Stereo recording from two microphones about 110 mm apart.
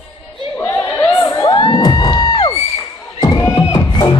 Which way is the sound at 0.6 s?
20° left (ahead or behind).